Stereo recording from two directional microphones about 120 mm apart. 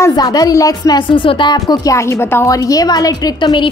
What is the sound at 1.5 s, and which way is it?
Speech, 30° left (ahead or behind).